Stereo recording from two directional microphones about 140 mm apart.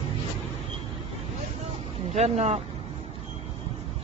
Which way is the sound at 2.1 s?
55° right (ahead or behind).